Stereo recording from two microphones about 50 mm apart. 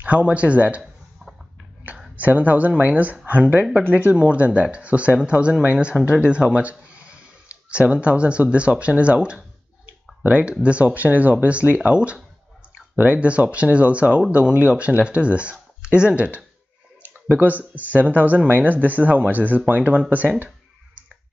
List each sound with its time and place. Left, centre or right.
0.0 s speech: right
1.2 s a sound: centre
2.1 s speech: right
17.1 s speech: right